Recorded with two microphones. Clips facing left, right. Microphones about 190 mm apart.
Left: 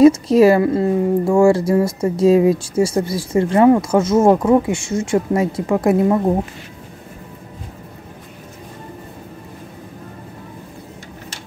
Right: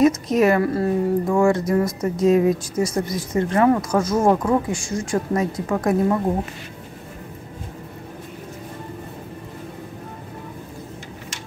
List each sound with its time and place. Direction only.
0.0 s speech: 30° left (ahead or behind)